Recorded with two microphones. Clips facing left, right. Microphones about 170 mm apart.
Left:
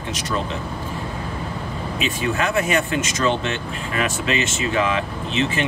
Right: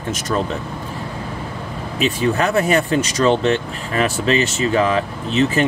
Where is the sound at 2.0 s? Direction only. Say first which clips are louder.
Right 6 dB; 35° right (ahead or behind).